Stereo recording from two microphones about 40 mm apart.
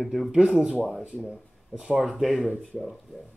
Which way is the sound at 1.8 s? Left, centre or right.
Centre.